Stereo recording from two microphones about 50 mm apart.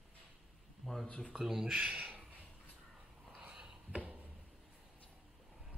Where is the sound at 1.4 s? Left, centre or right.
Centre.